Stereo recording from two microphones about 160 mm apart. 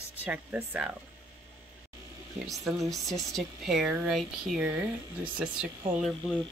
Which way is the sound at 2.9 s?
Centre (ahead or behind).